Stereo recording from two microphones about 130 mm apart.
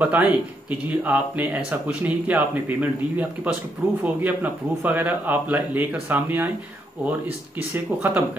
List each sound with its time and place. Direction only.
0.0 s speech: 10° right (ahead or behind)
7.7 s speech: 15° right (ahead or behind)